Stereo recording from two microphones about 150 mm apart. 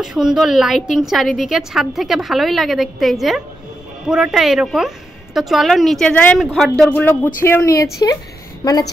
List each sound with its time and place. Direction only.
0.0 s a woman's voice: 5° right (ahead or behind)
6.9 s speech: 10° left (ahead or behind)